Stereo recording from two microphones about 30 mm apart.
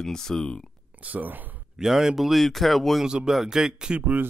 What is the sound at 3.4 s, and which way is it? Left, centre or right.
Speech, right.